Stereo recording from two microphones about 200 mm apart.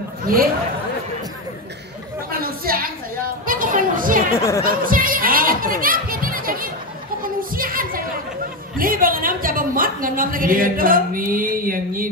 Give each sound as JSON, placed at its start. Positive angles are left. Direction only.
{"t": 0.2, "sound": "speech", "side_deg": -45}
{"t": 2.3, "sound": "a sound", "side_deg": -45}
{"t": 3.4, "sound": "chatter", "side_deg": -45}
{"t": 4.4, "sound": "speech", "side_deg": 15}
{"t": 4.8, "sound": "speech", "side_deg": -45}
{"t": 7.2, "sound": "a sound", "side_deg": -45}
{"t": 8.7, "sound": "a woman's voice", "side_deg": -45}